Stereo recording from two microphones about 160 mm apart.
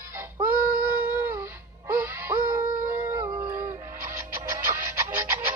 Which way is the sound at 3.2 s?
15° right (ahead or behind).